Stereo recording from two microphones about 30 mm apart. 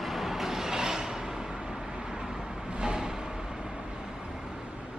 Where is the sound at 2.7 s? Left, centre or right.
Right.